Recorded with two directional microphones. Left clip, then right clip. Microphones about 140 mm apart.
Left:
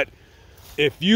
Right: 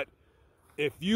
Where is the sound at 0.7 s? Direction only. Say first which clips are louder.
Left 10 dB; 50° right (ahead or behind).